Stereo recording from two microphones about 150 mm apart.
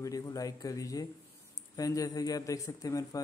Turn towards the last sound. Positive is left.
turn(degrees=20)  # may be behind; listen again after turning